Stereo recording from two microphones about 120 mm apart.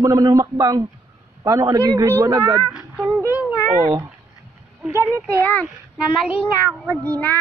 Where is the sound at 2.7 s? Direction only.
5° right (ahead or behind).